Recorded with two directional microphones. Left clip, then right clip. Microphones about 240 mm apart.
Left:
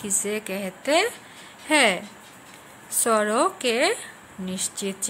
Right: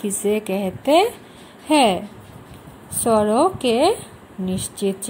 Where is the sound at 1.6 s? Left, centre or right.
Left.